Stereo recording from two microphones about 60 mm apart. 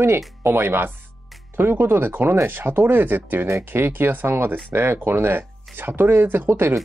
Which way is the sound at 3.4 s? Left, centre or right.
Right.